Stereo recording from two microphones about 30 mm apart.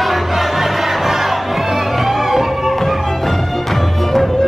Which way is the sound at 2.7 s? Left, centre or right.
Centre.